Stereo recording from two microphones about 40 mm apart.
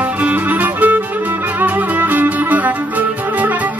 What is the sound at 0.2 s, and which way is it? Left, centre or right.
Music, right.